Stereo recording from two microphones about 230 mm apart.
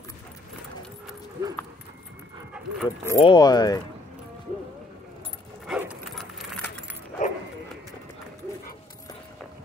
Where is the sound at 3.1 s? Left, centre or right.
Left.